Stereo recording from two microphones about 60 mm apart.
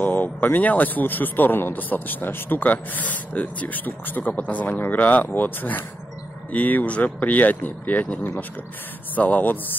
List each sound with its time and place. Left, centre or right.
0.0 s a man's voice: left